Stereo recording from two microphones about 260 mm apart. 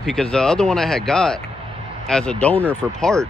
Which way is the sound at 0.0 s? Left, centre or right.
Centre.